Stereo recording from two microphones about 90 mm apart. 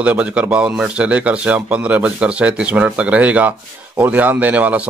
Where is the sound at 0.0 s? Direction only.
15° right (ahead or behind).